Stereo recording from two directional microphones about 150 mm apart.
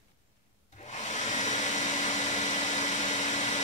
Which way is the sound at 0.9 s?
55° left (ahead or behind).